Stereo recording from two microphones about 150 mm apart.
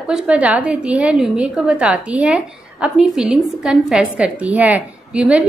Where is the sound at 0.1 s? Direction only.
5° right (ahead or behind).